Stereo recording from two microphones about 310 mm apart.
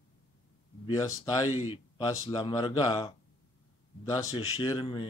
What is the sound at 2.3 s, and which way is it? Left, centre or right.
Speech, centre.